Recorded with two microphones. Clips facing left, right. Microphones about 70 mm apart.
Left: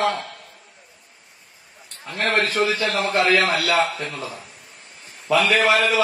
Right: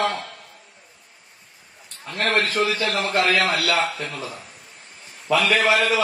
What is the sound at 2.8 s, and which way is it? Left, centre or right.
A man's voice, left.